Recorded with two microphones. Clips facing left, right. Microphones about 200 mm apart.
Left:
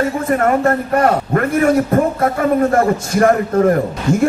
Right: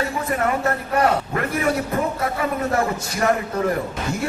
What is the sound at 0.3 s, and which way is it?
A man's voice, 50° left (ahead or behind).